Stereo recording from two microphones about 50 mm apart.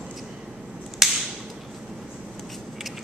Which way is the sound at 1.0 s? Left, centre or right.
Centre.